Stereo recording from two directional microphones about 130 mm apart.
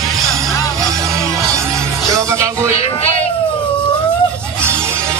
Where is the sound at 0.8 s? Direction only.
25° right (ahead or behind).